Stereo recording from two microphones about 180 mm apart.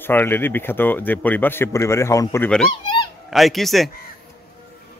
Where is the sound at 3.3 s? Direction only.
Centre (ahead or behind).